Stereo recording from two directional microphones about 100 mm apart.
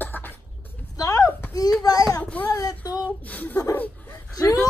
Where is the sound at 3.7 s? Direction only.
15° left (ahead or behind).